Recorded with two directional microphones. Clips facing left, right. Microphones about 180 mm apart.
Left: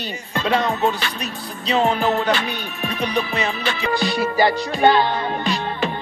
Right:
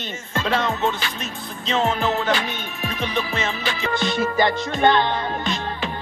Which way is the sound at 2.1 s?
40° left (ahead or behind).